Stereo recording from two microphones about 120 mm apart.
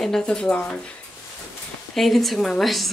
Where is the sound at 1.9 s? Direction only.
Centre (ahead or behind).